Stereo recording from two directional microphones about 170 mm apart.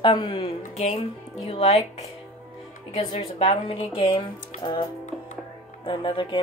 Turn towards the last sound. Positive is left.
turn(degrees=30)  # may be behind; listen again after turning